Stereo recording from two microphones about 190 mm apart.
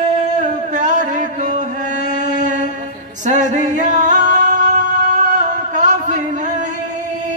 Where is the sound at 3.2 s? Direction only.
40° right (ahead or behind).